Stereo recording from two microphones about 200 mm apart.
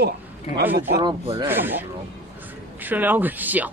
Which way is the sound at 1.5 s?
10° right (ahead or behind).